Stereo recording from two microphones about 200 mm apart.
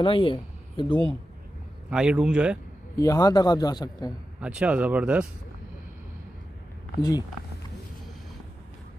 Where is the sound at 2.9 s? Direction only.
15° left (ahead or behind).